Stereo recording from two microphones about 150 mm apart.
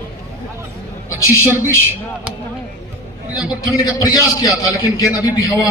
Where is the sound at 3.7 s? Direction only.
25° left (ahead or behind).